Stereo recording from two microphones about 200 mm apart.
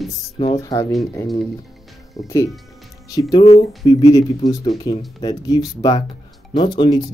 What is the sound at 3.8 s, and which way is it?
Speech, 15° left (ahead or behind).